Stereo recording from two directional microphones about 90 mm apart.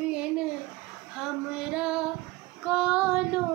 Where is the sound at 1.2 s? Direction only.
10° right (ahead or behind).